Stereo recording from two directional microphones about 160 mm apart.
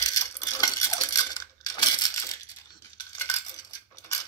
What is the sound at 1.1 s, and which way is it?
Coin, 20° left (ahead or behind).